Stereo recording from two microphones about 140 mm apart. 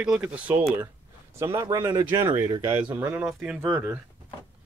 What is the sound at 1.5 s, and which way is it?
Speech, 25° right (ahead or behind).